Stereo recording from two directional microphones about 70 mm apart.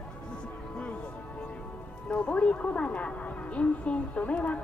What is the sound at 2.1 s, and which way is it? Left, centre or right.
A woman's voice, centre.